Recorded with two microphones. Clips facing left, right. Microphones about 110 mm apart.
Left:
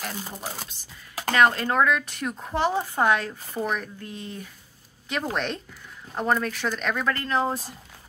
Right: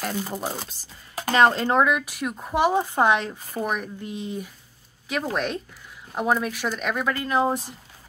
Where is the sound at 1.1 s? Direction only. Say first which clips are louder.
Right 2 dB; 25° right (ahead or behind).